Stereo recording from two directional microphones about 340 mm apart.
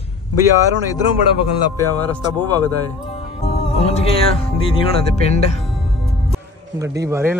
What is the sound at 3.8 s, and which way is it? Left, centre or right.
Speech, centre.